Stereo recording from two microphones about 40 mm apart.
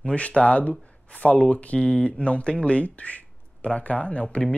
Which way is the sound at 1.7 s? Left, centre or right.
Left.